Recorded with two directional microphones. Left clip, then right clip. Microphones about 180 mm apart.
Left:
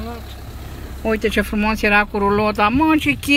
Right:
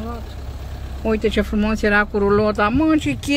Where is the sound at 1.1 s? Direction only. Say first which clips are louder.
Left 1 dB; 15° left (ahead or behind).